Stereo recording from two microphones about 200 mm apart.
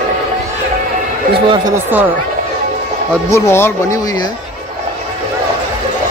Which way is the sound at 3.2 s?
15° left (ahead or behind).